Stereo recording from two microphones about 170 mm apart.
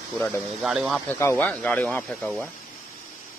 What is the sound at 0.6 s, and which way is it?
Speech, 5° right (ahead or behind).